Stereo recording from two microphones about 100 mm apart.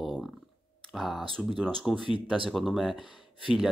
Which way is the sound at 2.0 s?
65° right (ahead or behind).